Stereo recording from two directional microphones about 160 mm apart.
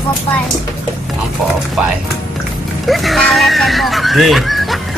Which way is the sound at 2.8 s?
Centre (ahead or behind).